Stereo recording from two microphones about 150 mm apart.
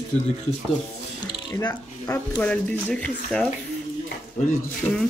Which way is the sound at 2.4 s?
10° left (ahead or behind).